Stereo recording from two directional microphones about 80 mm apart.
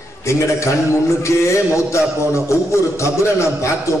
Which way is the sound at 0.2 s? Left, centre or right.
Left.